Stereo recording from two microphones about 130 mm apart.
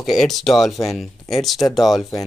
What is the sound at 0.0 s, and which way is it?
Speech, centre (ahead or behind).